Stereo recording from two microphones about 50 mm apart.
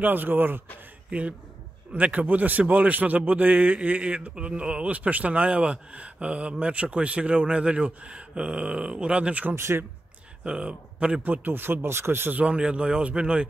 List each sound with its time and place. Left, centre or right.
0.0 s speech: right
1.1 s a man's voice: right
9.6 s speech: right
10.4 s speech: centre
11.2 s speech: right
12.3 s a man's voice: right